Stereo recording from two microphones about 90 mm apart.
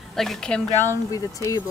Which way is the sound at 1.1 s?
40° left (ahead or behind).